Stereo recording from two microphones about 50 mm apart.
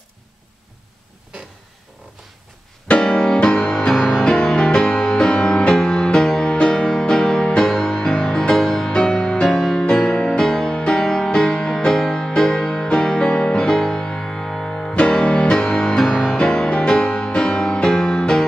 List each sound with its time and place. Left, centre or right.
2.9 s music: centre
4.2 s music: centre
9.8 s music: centre
16.3 s music: centre